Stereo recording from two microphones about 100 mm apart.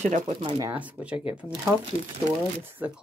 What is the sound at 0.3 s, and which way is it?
Speech, 60° right (ahead or behind).